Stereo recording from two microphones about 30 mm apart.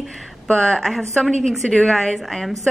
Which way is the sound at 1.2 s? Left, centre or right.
Centre.